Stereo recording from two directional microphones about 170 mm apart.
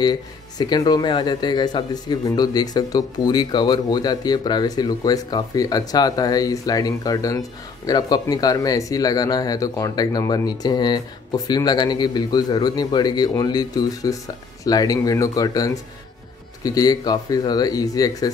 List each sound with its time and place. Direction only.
0.0 s speech: 25° left (ahead or behind)